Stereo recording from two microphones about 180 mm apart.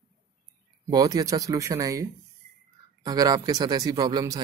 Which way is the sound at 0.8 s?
20° right (ahead or behind).